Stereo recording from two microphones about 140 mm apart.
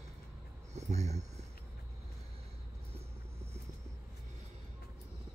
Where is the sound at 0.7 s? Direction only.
55° right (ahead or behind).